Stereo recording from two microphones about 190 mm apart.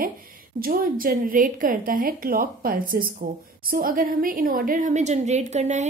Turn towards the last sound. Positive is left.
turn(degrees=-35)  # may be behind; listen again after turning